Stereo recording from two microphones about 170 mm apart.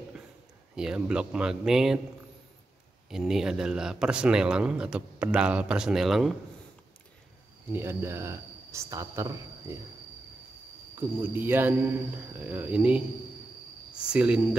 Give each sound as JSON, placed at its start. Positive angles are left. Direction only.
{"t": 0.7, "sound": "speech", "side_deg": -5}
{"t": 3.1, "sound": "speech", "side_deg": 0}
{"t": 7.7, "sound": "speech", "side_deg": -15}
{"t": 11.0, "sound": "speech", "side_deg": -10}
{"t": 14.0, "sound": "speech", "side_deg": -5}